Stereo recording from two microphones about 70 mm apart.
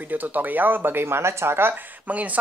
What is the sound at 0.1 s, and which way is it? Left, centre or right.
Speech, right.